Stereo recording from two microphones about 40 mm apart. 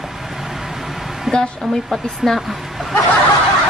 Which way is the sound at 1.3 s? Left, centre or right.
Centre.